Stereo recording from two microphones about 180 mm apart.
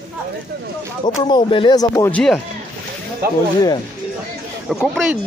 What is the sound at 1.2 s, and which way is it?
Speech, 25° left (ahead or behind).